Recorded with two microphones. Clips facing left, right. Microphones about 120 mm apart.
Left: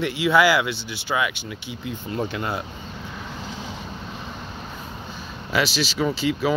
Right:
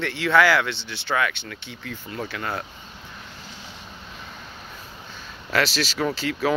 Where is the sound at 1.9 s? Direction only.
20° left (ahead or behind).